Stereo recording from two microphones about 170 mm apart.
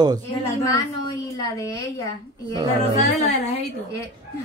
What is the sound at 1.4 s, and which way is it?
Speech, 20° left (ahead or behind).